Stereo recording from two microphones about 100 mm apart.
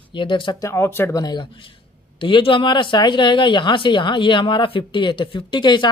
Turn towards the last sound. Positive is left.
turn(degrees=50)  # may be behind; listen again after turning